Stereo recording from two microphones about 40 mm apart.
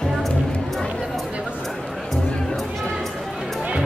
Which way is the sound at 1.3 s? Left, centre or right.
Right.